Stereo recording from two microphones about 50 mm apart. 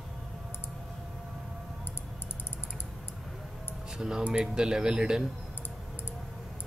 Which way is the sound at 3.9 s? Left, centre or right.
Centre.